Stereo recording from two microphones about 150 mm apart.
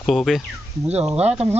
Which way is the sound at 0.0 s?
Centre (ahead or behind).